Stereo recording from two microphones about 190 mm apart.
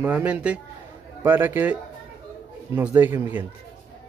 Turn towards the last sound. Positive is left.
turn(degrees=-10)  # may be behind; listen again after turning